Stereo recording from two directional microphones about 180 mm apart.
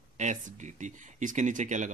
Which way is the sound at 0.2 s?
45° right (ahead or behind).